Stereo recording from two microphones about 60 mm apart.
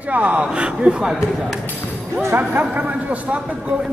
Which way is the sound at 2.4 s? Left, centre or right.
Right.